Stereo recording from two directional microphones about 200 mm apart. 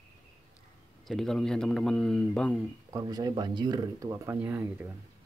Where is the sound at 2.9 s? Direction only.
20° right (ahead or behind).